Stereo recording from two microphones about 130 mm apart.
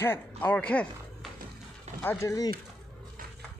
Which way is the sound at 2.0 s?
20° left (ahead or behind).